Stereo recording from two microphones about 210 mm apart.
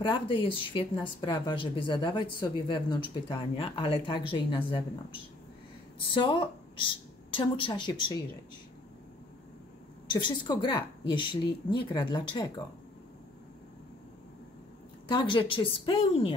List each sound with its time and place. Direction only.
0.3 s a woman's voice: 25° left (ahead or behind)
10.0 s speech: 20° left (ahead or behind)
15.0 s speech: 20° left (ahead or behind)